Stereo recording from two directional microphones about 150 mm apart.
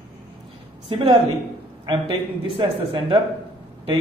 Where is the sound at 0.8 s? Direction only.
35° right (ahead or behind).